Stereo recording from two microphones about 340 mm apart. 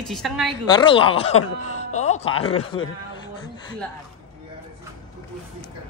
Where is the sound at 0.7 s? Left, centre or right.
Centre.